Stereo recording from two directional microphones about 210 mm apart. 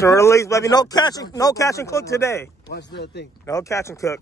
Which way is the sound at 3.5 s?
15° left (ahead or behind).